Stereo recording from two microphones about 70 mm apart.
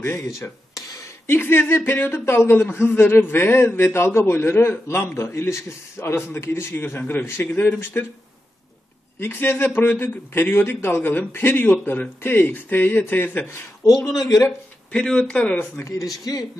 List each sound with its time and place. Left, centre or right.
1.2 s a man's voice: left
9.2 s a man's voice: left
13.5 s speech: left
14.9 s speech: centre